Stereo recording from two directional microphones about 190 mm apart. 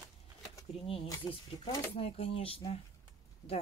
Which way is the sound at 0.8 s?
30° left (ahead or behind).